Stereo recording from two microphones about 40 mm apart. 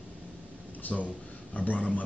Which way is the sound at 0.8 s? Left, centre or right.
Left.